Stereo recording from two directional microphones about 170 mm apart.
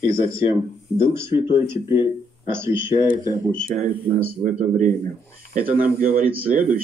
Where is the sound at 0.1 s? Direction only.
15° right (ahead or behind).